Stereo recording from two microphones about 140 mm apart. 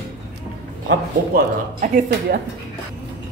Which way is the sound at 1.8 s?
70° right (ahead or behind).